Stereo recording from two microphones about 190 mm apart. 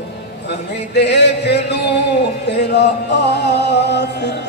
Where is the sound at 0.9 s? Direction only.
65° left (ahead or behind).